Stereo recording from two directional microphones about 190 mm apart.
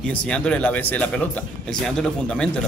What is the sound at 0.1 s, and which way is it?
A man's voice, 5° left (ahead or behind).